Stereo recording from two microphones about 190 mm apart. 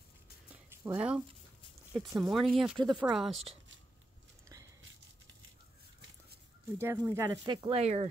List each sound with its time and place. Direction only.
0.5 s a sound: 5° right (ahead or behind)
2.0 s speech: centre (ahead or behind)
6.8 s speech: 15° right (ahead or behind); by 8.1 s 30° right (ahead or behind)